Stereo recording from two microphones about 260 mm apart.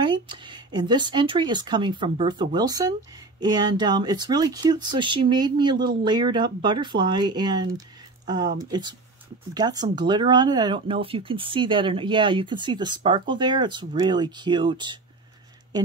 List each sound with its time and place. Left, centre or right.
0.0 s speech: centre